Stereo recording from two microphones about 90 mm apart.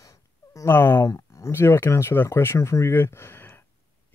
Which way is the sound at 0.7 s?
25° left (ahead or behind).